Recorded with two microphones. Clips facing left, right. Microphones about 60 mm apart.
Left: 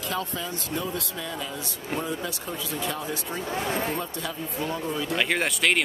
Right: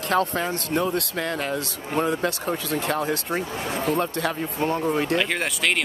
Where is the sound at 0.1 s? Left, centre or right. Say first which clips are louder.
Right 10 dB; right.